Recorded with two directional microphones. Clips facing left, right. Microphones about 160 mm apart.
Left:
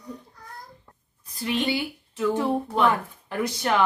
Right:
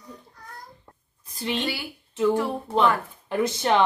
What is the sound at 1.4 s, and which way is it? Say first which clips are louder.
Speech: left 2 dB; 25° right (ahead or behind).